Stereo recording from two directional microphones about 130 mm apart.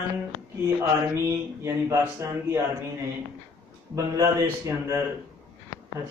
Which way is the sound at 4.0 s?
25° right (ahead or behind).